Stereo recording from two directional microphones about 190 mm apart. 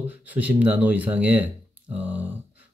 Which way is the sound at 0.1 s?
10° right (ahead or behind).